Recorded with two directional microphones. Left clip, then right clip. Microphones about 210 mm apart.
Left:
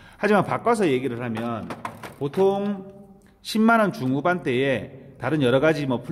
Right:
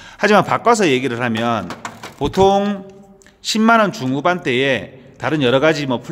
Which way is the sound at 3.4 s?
10° right (ahead or behind).